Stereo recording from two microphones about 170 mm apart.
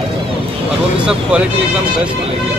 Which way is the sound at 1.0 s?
5° right (ahead or behind).